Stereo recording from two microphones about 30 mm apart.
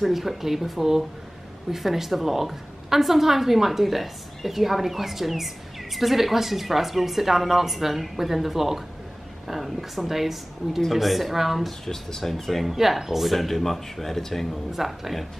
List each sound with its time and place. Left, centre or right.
0.0 s a woman's voice: centre
11.8 s speech: centre
12.7 s speech: centre
14.7 s speech: centre